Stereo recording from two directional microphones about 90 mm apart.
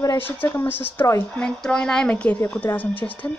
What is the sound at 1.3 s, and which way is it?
A woman's voice, 10° left (ahead or behind).